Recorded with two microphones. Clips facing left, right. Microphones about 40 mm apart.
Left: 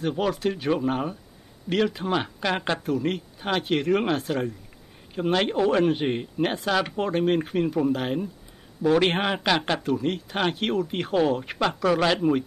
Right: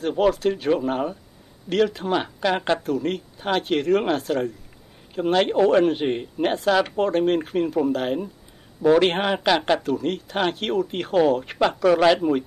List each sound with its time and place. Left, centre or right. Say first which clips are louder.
0.0 s speech: right 5 dB; centre